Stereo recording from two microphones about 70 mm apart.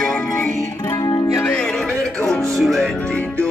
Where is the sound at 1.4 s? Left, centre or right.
Centre.